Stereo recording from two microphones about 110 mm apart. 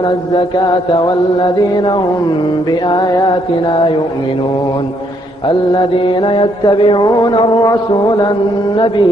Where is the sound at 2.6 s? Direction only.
40° left (ahead or behind).